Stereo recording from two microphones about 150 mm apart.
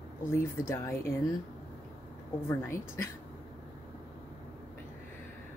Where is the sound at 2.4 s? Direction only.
15° left (ahead or behind).